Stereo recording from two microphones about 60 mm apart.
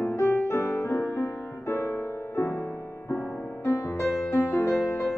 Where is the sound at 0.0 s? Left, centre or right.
Left.